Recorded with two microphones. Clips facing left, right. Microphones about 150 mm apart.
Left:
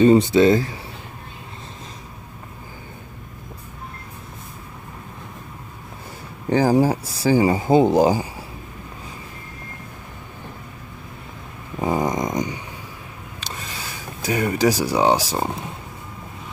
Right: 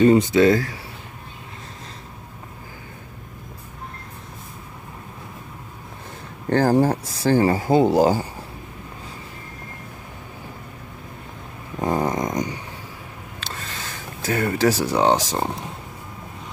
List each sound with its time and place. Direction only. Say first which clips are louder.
0.0 s speech: left 1 dB; 25° left (ahead or behind)
6.5 s speech: left 1 dB; 10° left (ahead or behind)
11.8 s snoring: left 1 dB; 10° left (ahead or behind)
13.4 s a sound: even; 15° left (ahead or behind)